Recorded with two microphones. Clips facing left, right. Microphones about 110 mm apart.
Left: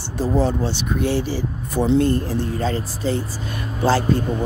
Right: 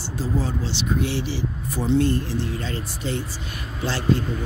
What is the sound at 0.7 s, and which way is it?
Speech, 45° left (ahead or behind).